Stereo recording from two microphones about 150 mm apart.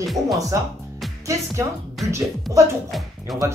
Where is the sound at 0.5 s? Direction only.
20° right (ahead or behind).